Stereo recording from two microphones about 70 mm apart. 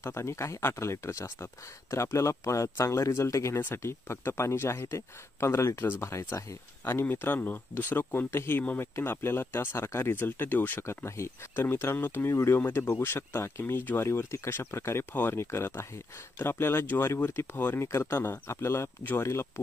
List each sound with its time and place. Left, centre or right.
0.0 s speech: left
3.5 s speech: left
11.1 s speech: left